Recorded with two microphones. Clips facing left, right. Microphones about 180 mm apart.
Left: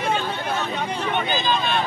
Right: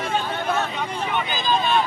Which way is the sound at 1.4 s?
40° right (ahead or behind).